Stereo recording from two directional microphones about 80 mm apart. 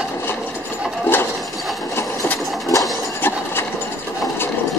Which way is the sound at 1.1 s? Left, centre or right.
Left.